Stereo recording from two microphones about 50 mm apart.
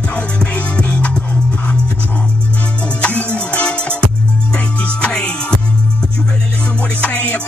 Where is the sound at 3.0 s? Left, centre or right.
Left.